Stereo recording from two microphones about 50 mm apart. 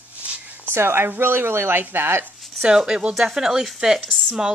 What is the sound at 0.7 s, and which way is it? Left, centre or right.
Speech, right.